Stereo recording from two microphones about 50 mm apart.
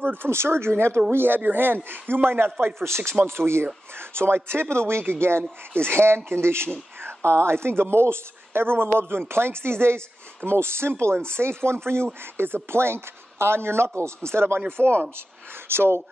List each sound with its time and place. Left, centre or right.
0.0 s a sound: right
0.3 s speech: right
2.6 s speech: right
15.7 s speech: right